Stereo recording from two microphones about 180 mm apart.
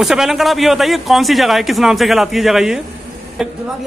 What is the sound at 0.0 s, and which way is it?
A man's voice, centre (ahead or behind).